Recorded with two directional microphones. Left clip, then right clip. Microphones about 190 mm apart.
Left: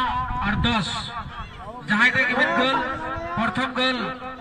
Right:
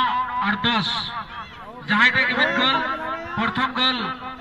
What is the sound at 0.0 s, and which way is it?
Music, 50° left (ahead or behind).